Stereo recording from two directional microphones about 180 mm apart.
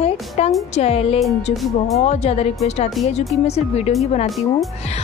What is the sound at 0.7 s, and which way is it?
A woman's voice, 35° left (ahead or behind).